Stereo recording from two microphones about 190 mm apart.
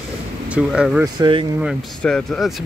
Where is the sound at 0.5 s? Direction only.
5° right (ahead or behind).